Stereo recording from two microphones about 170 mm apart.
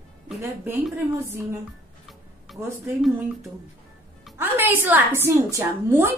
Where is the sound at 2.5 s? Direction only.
Centre (ahead or behind).